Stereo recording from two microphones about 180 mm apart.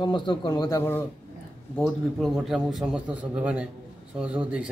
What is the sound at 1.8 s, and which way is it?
A man's voice, centre (ahead or behind).